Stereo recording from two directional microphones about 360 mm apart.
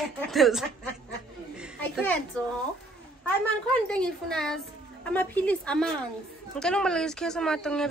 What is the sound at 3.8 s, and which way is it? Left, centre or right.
A woman's voice, centre.